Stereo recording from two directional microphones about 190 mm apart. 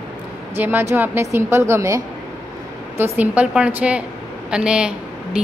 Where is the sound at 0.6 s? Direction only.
10° right (ahead or behind).